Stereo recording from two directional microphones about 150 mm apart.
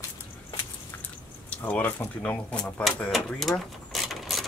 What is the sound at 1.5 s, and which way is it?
Speech, 10° left (ahead or behind).